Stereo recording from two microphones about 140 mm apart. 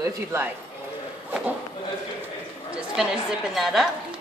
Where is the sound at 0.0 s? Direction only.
20° right (ahead or behind).